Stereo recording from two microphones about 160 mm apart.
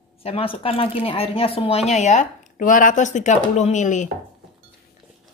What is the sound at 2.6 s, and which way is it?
Speech, 55° left (ahead or behind).